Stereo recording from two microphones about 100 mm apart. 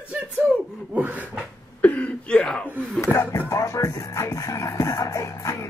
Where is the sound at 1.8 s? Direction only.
15° left (ahead or behind).